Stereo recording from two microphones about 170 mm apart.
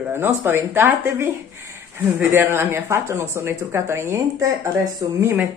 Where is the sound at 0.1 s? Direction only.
15° right (ahead or behind).